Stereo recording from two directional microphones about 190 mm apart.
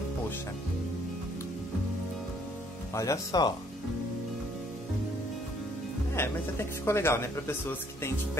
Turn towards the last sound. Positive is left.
turn(degrees=15)  # may be behind; listen again after turning